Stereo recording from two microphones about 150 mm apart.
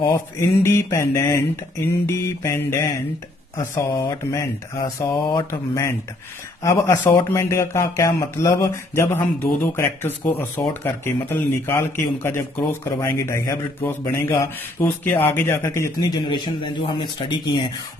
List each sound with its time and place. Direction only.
0.0 s speech: 20° left (ahead or behind)